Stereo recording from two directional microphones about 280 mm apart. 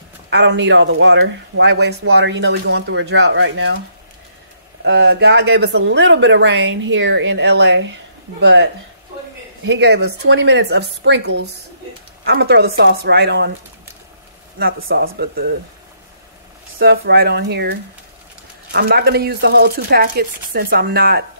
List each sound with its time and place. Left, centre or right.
0.3 s speech: right
4.8 s speech: right
9.7 s speech: right
14.6 s speech: right
16.7 s speech: right